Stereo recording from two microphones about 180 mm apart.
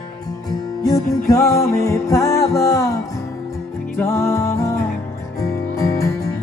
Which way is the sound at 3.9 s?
15° left (ahead or behind).